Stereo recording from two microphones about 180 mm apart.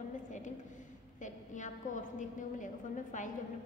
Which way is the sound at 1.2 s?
45° left (ahead or behind).